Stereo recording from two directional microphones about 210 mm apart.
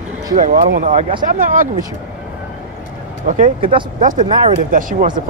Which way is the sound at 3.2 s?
40° right (ahead or behind).